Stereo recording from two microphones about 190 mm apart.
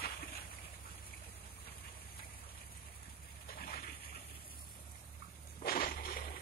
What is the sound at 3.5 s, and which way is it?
Dog, 55° left (ahead or behind).